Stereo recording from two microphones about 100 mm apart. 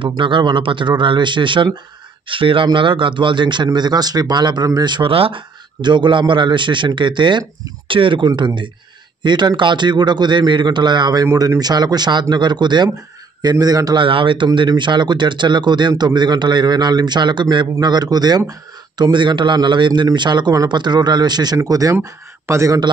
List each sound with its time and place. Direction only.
0.0 s speech: 55° right (ahead or behind)
5.8 s a man's voice: 50° right (ahead or behind)
14.0 s a man's voice: 60° right (ahead or behind); by 22.8 s 35° right (ahead or behind)